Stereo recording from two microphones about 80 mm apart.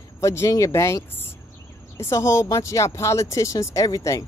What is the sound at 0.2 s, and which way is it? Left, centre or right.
Speech, left.